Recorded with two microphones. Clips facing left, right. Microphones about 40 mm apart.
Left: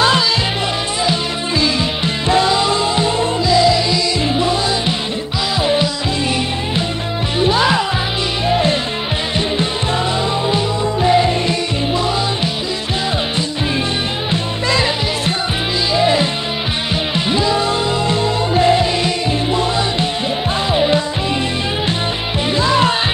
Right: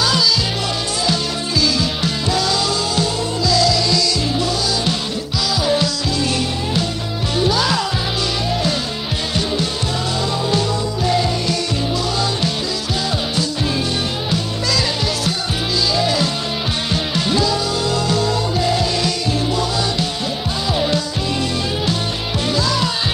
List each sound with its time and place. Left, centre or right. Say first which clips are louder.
1.6 s music: even; left
10.5 s music: left 2 dB; left
14.3 s music: left 4 dB; left
22.5 s music: left 6 dB; left